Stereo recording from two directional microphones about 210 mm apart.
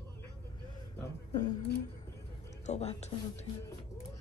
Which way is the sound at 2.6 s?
30° left (ahead or behind).